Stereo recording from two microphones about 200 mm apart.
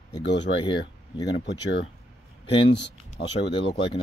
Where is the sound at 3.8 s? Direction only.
25° left (ahead or behind).